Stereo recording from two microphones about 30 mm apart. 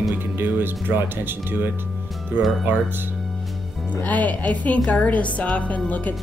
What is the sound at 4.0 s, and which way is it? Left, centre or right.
Speech, left.